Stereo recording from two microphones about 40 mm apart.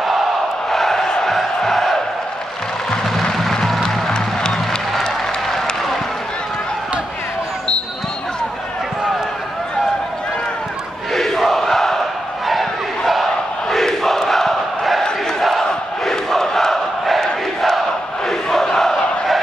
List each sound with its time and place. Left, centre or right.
0.7 s crowd: centre
1.3 s music: centre
3.2 s music: centre
11.1 s crowd: centre
16.1 s crowd: centre
18.5 s battle cry: centre